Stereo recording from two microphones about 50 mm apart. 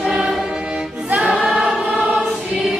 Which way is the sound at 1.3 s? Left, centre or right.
Centre.